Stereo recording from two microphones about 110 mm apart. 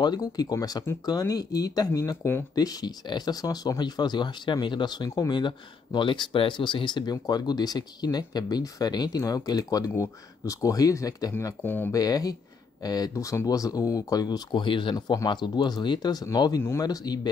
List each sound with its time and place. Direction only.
0.0 s speech: 40° left (ahead or behind)
2.5 s speech: 35° left (ahead or behind)
11.6 s speech: 15° left (ahead or behind)
11.9 s speech: 35° left (ahead or behind)